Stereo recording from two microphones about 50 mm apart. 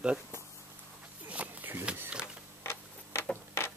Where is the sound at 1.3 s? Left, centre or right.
Right.